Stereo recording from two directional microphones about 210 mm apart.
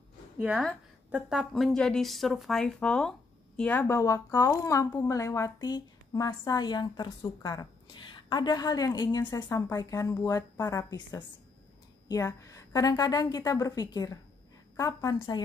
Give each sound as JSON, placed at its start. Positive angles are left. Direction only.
{"t": 0.4, "sound": "a woman's voice", "side_deg": 0}